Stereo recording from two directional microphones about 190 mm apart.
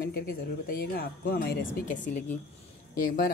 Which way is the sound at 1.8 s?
40° left (ahead or behind).